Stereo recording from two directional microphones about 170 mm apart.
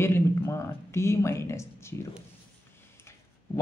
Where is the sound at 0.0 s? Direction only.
15° left (ahead or behind).